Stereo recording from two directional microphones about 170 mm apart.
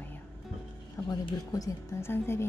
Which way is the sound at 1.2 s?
20° left (ahead or behind).